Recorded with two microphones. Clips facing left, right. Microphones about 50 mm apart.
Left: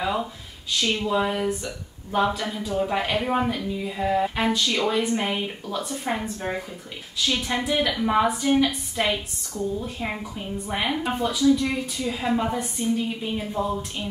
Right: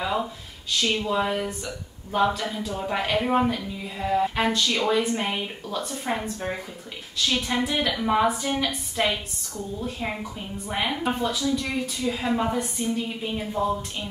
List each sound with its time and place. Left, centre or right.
0.0 s a woman's voice: centre